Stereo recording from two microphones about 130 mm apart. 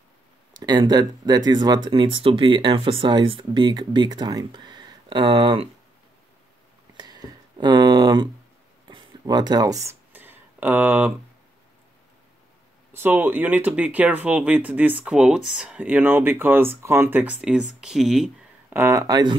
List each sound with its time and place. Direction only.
0.6 s speech: 30° right (ahead or behind)
7.0 s a sound: 30° right (ahead or behind)
8.8 s speech: 30° right (ahead or behind)
10.1 s a sound: 15° right (ahead or behind)
12.9 s speech: 15° right (ahead or behind)
18.7 s speech: 20° right (ahead or behind)